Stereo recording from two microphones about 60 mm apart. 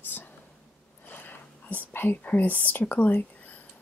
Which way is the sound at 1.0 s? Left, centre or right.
Left.